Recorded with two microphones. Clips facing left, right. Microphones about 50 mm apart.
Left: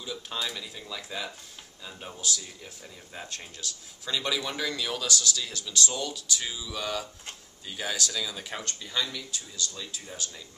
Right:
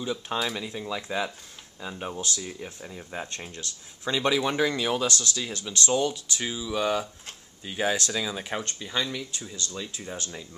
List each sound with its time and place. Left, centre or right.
0.0 s speech: right
0.4 s speech: centre
2.1 s speech: right
2.4 s speech: right